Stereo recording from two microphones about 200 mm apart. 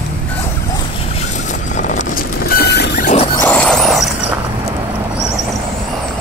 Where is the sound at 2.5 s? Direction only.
55° left (ahead or behind).